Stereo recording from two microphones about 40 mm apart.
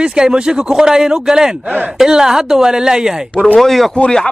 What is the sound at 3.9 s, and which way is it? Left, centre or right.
Speech, left.